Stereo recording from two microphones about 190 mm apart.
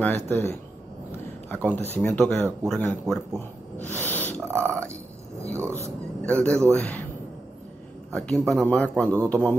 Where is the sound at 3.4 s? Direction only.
10° left (ahead or behind).